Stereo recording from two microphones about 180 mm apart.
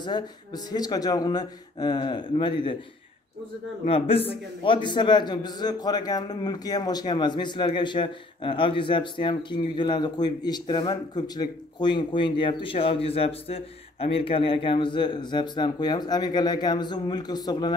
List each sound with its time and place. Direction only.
0.0 s a man's voice: 25° left (ahead or behind)
3.8 s a man's voice: 30° left (ahead or behind)